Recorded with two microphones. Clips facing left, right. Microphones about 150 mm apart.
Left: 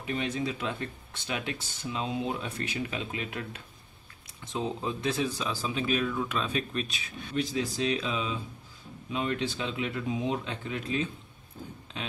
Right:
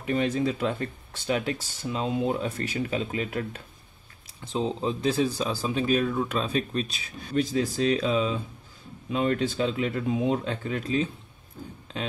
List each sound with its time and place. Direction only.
0.0 s speech: 45° right (ahead or behind)
4.5 s speech: 30° right (ahead or behind)